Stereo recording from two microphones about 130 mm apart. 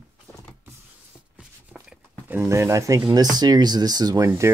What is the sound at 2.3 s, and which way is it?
Speech, 20° right (ahead or behind).